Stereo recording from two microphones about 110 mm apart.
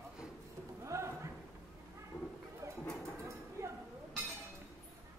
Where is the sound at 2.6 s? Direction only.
25° right (ahead or behind).